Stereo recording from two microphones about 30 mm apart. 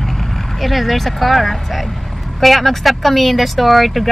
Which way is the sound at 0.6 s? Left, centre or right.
Centre.